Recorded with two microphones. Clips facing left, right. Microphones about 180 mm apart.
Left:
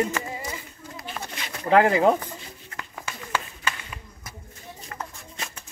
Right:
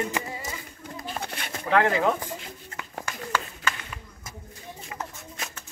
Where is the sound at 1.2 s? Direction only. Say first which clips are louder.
Right 2 dB; 25° right (ahead or behind).